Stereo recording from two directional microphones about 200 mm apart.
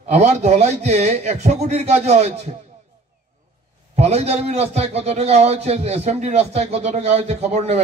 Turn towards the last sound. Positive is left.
turn(degrees=-30)  # may be behind; listen again after turning